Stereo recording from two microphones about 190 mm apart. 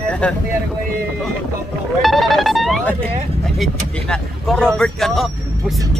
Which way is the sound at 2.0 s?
Centre (ahead or behind).